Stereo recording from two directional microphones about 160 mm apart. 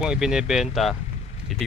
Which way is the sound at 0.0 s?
5° right (ahead or behind).